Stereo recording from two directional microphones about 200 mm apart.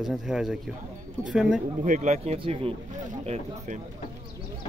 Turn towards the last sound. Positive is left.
turn(degrees=-30)  # may be behind; listen again after turning